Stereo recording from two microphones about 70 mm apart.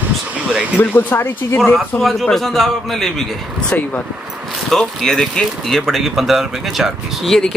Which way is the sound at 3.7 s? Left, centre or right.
Left.